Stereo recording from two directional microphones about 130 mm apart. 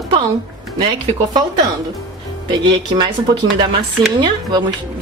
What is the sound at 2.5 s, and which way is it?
Speech, 35° right (ahead or behind).